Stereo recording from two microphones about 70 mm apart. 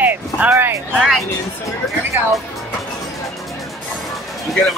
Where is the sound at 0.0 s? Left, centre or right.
Right.